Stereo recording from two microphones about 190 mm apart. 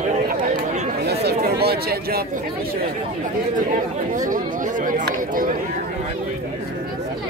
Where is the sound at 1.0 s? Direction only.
55° right (ahead or behind).